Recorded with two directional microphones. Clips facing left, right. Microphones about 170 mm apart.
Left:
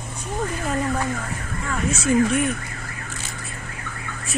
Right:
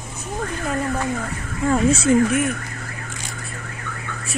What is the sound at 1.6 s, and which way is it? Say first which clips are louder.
Speech: right 7 dB; 30° right (ahead or behind).